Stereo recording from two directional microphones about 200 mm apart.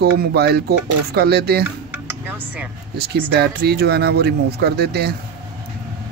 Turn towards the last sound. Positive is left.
turn(degrees=-55)  # may be behind; listen again after turning